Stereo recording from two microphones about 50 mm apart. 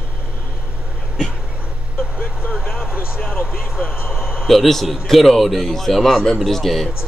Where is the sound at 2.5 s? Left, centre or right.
Centre.